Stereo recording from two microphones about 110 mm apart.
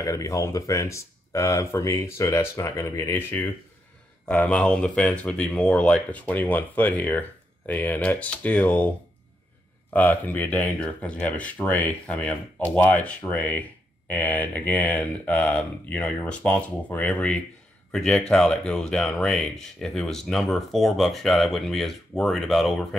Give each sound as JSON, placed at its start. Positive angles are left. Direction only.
{"t": 0.0, "sound": "speech", "side_deg": 30}
{"t": 9.9, "sound": "speech", "side_deg": 15}